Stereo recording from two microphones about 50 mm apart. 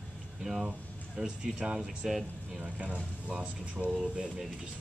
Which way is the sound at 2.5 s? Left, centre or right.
Right.